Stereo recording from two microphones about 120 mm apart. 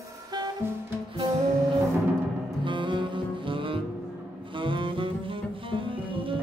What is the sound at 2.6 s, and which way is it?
Music, 40° right (ahead or behind).